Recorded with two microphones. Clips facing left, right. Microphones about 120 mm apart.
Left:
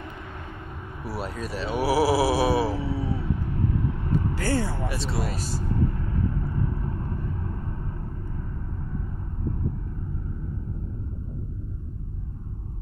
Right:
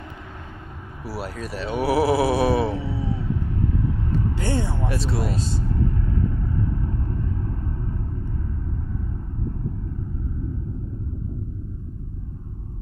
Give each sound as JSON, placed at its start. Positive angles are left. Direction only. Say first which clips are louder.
{"t": 1.0, "sound": "speech", "louder": "right 1 dB", "side_deg": 0}
{"t": 2.9, "sound": "a sound", "louder": "right 1 dB", "side_deg": 55}
{"t": 4.4, "sound": "vehicle", "louder": "even", "side_deg": -20}
{"t": 4.8, "sound": "speech", "louder": "right 3 dB", "side_deg": 0}
{"t": 5.3, "sound": "speech", "louder": "right 5 dB", "side_deg": -20}